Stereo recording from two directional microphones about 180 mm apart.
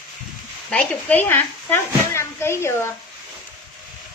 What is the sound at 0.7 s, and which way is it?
A woman's voice, 5° left (ahead or behind).